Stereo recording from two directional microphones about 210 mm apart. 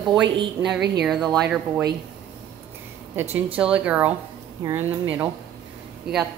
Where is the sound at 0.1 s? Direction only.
20° right (ahead or behind).